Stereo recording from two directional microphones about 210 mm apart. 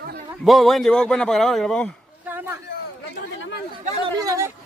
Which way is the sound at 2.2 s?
10° right (ahead or behind).